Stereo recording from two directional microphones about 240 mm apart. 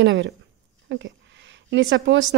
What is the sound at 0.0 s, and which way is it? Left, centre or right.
Speech, right.